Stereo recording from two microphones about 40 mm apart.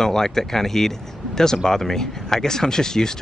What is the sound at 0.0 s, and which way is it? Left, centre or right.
Speech, centre.